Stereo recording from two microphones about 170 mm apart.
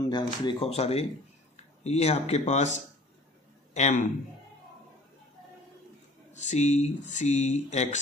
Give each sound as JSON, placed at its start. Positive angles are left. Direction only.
{"t": 0.0, "sound": "speech", "side_deg": 25}
{"t": 6.3, "sound": "speech", "side_deg": 45}